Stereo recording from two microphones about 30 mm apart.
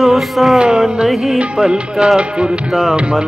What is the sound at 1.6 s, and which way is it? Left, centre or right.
Speech, right.